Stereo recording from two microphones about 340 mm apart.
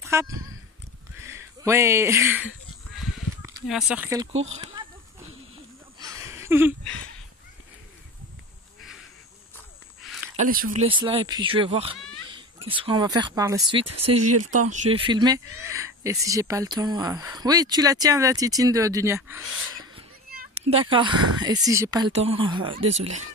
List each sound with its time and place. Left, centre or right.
0.0 s speech: centre
1.1 s a sound: centre
3.4 s speech: centre
4.5 s a sound: centre
5.9 s a sound: centre
10.3 s speech: right
14.3 s speech: right
14.7 s speech: centre
20.2 s cat: right
21.4 s speech: centre